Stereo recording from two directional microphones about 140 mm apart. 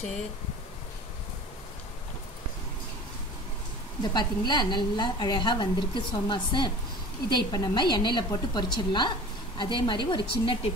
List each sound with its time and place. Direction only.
4.0 s a woman's voice: 30° left (ahead or behind)